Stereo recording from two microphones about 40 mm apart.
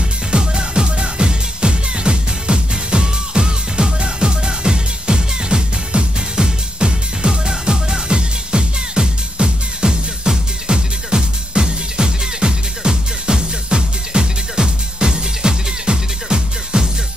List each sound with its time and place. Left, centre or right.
0.3 s music: right